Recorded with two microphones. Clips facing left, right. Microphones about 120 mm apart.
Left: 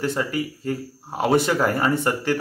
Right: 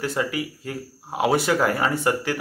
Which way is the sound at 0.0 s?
5° right (ahead or behind).